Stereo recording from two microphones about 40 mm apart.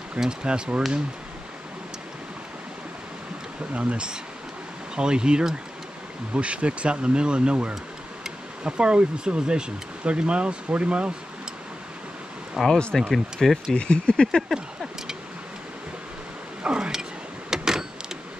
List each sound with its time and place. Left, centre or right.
0.3 s speech: right
3.7 s speech: right
6.3 s speech: right
12.6 s speech: centre
13.1 s speech: centre
13.7 s speech: left
14.5 s a sound: centre
16.6 s a sound: right
17.5 s vehicle: centre